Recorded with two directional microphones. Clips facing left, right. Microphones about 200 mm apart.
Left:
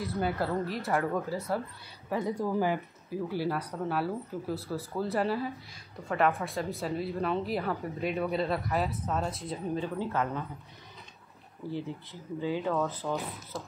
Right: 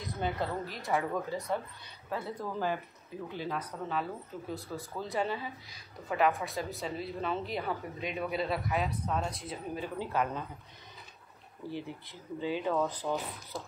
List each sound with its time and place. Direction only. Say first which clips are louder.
0.0 s a woman's voice: left 3 dB; 5° left (ahead or behind)
9.9 s speech: left 1 dB; 15° right (ahead or behind)
11.6 s speech: left 3 dB; 10° left (ahead or behind)
12.1 s speech: left 1 dB; 15° right (ahead or behind)